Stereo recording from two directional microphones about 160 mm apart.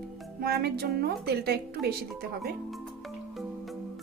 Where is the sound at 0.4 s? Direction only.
75° right (ahead or behind).